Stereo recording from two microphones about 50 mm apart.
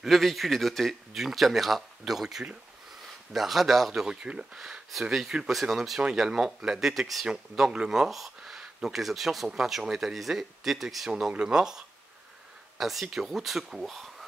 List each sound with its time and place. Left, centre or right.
0.0 s speech: centre
4.6 s speech: centre
11.1 s speech: centre